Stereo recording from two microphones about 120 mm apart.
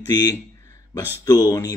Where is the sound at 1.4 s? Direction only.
30° left (ahead or behind).